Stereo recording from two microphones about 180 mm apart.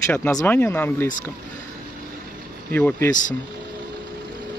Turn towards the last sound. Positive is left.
turn(degrees=10)  # may be behind; listen again after turning